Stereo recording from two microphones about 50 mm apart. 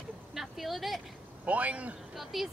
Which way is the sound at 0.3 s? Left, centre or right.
Centre.